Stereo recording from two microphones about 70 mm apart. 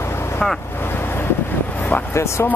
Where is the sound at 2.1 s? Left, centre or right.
Left.